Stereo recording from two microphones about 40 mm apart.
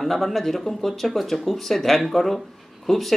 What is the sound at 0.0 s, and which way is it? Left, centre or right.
Speech, centre.